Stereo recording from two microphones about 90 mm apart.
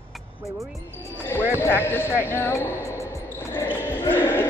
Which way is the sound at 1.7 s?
25° left (ahead or behind).